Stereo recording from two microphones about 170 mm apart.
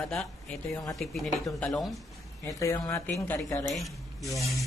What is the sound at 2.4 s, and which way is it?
Speech, 20° left (ahead or behind).